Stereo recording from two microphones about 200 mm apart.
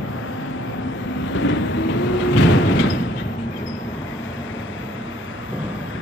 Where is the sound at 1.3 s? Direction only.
70° left (ahead or behind).